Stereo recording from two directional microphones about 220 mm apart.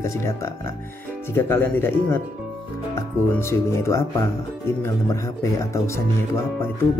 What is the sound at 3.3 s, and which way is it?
Speech, 10° left (ahead or behind).